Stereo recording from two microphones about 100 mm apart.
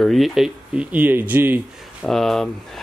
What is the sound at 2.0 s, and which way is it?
Speech, centre (ahead or behind).